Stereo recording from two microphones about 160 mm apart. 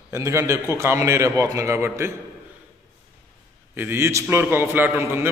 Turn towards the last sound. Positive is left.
turn(degrees=-15)  # may be behind; listen again after turning